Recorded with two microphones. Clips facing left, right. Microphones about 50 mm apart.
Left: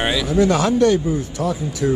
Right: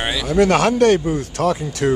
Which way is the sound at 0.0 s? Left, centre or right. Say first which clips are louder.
Left 2 dB; centre.